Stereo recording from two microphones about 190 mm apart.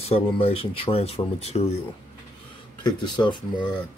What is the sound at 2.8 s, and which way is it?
Speech, 25° left (ahead or behind).